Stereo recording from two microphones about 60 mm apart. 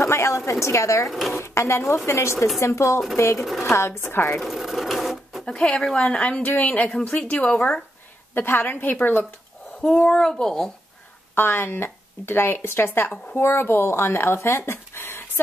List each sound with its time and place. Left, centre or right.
0.0 s a sound: left
0.5 s a woman's voice: left
1.0 s speech: centre
1.4 s speech: left
2.3 s speech: centre
2.6 s a woman's voice: left
3.3 s speech: centre
3.7 s speech: left
4.4 s speech: centre
5.4 s speech: centre
8.4 s speech: left
9.8 s speech: centre
11.3 s speech: left
14.7 s a sound: left